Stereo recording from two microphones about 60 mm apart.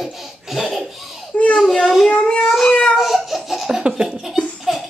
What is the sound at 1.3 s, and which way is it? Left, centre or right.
Baby cry, left.